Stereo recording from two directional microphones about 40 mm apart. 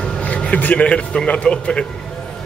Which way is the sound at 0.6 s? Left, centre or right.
Left.